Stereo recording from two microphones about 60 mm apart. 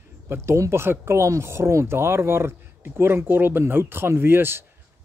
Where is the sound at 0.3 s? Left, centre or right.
Right.